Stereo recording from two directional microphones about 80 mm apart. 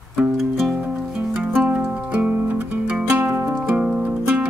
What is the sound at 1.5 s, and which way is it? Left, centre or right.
Music, centre.